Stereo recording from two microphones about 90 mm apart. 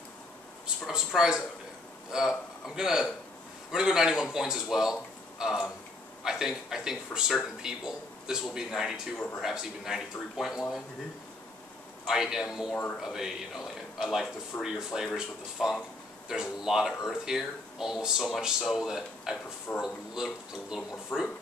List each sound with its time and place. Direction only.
0.8 s speech: 5° right (ahead or behind)
12.1 s speech: 5° right (ahead or behind)